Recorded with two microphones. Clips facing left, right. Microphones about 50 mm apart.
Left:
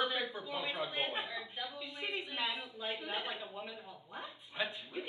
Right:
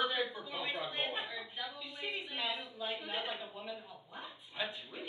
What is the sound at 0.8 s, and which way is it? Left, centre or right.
Speech, centre.